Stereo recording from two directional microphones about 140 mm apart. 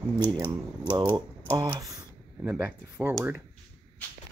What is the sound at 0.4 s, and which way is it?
Speech, 30° right (ahead or behind).